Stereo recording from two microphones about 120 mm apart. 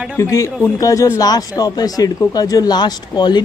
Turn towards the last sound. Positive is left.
turn(degrees=35)  # may be behind; listen again after turning